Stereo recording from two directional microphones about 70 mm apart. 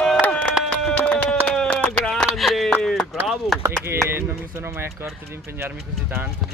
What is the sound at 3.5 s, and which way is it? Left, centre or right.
Chop, centre.